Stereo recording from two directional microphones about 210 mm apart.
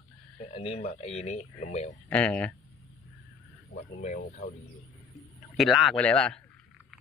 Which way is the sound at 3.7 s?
35° left (ahead or behind).